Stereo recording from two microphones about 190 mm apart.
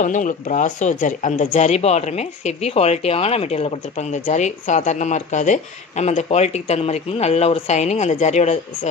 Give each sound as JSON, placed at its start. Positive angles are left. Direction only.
{"t": 0.0, "sound": "speech", "side_deg": 40}